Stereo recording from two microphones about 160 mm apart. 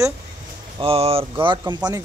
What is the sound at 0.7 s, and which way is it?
Speech, 35° right (ahead or behind).